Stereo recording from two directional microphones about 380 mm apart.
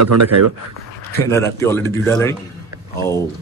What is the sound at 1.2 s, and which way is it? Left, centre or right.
Speech, centre.